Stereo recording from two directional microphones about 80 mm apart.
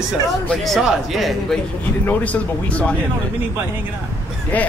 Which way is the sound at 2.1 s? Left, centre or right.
Centre.